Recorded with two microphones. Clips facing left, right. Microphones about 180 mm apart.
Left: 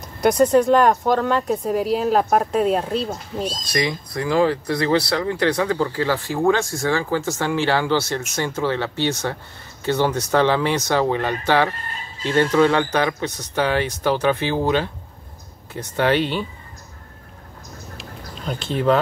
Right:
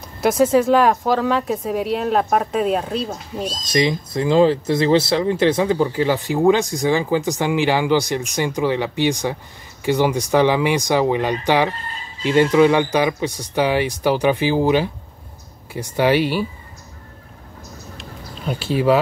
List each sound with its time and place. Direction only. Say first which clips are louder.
0.2 s speech: even; 5° right (ahead or behind)
3.6 s speech: right 9 dB; 25° right (ahead or behind)
17.9 s a sound: even; 5° right (ahead or behind)